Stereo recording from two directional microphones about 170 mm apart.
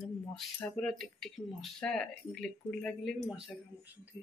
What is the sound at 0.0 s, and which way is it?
Speech, 5° left (ahead or behind).